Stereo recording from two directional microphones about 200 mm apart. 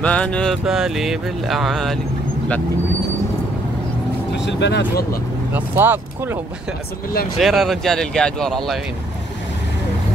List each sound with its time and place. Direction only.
0.0 s speech: 5° left (ahead or behind)
4.3 s speech: 60° left (ahead or behind)
5.5 s speech: 10° right (ahead or behind)
7.3 s speech: centre (ahead or behind)